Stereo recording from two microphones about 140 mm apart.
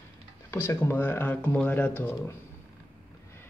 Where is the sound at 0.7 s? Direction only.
15° left (ahead or behind).